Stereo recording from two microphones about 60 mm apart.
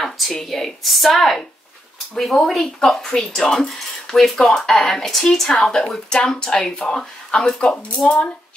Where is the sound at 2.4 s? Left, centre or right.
Centre.